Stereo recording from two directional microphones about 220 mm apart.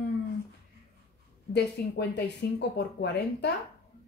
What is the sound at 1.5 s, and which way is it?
Speech, 50° left (ahead or behind).